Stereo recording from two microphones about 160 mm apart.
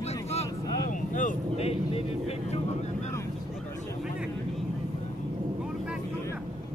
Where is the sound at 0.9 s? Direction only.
55° left (ahead or behind).